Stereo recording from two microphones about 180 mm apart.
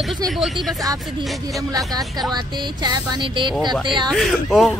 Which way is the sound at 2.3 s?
25° right (ahead or behind).